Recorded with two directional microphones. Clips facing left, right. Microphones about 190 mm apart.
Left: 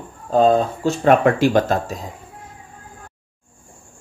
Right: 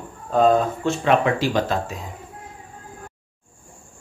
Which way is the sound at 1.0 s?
50° left (ahead or behind).